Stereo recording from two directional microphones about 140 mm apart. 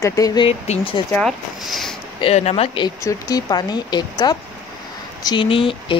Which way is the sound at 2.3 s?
50° left (ahead or behind).